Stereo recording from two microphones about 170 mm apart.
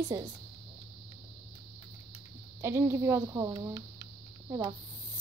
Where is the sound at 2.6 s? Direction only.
15° right (ahead or behind).